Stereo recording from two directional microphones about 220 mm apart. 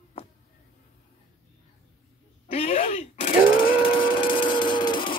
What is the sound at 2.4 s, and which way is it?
Groan, 30° left (ahead or behind).